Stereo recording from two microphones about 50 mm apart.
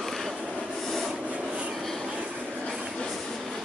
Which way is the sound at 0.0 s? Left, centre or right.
Centre.